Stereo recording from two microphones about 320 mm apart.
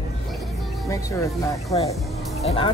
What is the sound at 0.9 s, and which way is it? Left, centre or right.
Speech, centre.